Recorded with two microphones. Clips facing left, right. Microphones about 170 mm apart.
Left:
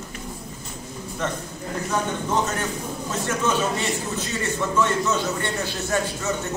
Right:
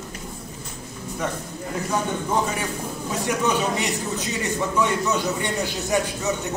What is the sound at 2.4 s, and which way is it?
A man's voice, 10° right (ahead or behind).